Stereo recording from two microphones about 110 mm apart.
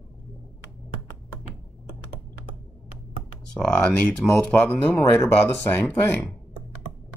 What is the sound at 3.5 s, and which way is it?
Speech, 10° left (ahead or behind).